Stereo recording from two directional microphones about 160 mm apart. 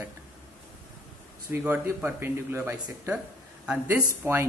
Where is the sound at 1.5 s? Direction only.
10° right (ahead or behind).